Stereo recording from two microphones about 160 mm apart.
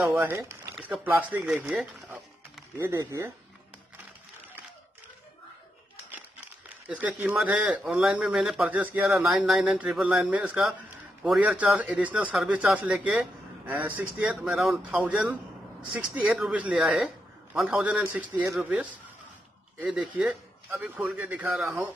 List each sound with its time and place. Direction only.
0.1 s speech: 10° right (ahead or behind)
2.8 s speech: 20° right (ahead or behind)
6.9 s a man's voice: 10° right (ahead or behind)